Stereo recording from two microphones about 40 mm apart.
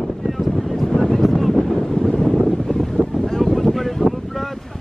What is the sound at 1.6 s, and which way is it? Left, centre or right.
Wind noise, centre.